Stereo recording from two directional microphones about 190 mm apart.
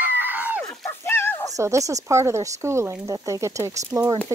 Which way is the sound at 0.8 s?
10° left (ahead or behind).